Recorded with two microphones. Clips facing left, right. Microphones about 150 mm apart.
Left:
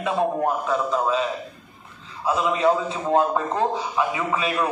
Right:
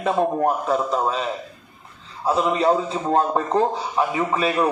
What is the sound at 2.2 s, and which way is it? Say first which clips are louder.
Speech: right 2 dB; 35° right (ahead or behind).